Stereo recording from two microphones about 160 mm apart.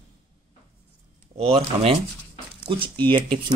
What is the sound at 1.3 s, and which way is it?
Speech, 40° right (ahead or behind).